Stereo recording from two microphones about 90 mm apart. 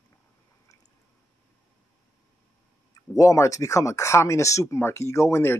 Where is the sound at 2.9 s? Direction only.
40° left (ahead or behind).